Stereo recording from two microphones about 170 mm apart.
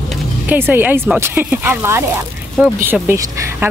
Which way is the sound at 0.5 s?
10° right (ahead or behind).